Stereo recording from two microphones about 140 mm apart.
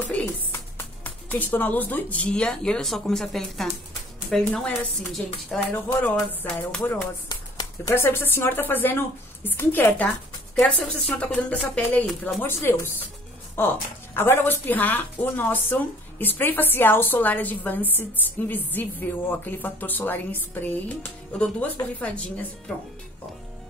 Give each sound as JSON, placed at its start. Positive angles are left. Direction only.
{"t": 0.0, "sound": "a woman's voice", "side_deg": 15}
{"t": 7.2, "sound": "a woman's voice", "side_deg": 25}
{"t": 10.5, "sound": "a woman's voice", "side_deg": 0}